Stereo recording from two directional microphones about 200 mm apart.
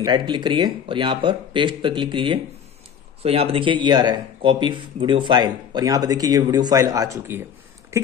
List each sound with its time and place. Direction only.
0.0 s speech: 20° right (ahead or behind)